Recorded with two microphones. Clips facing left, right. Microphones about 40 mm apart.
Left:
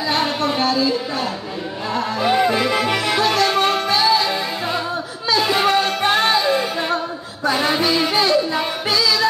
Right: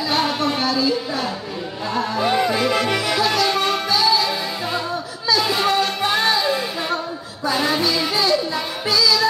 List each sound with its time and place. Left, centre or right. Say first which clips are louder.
0.6 s a sound: left 2 dB; left
2.0 s music: left 1 dB; centre
3.2 s music: left 3 dB; left
5.4 s music: left 5 dB; left
5.7 s music: left 2 dB; left
7.4 s music: left 2 dB; left